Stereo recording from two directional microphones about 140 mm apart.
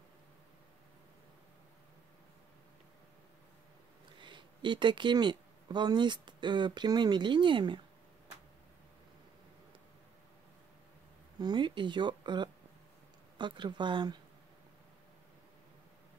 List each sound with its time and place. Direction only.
4.2 s speech: 35° right (ahead or behind)
11.3 s speech: 30° right (ahead or behind)